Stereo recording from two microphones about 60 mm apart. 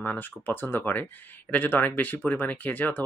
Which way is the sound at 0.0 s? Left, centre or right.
Left.